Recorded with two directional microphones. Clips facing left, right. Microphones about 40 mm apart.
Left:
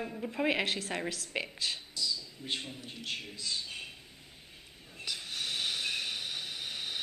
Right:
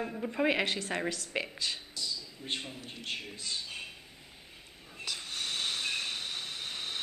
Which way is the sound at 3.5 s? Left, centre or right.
Centre.